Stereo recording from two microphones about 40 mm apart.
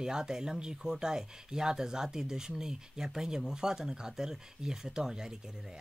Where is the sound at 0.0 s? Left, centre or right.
Centre.